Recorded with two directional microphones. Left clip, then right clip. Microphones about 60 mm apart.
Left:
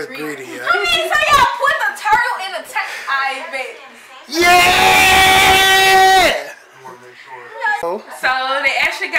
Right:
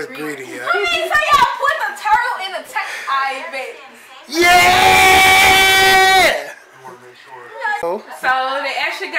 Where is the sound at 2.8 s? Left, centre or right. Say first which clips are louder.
Right 1 dB; centre.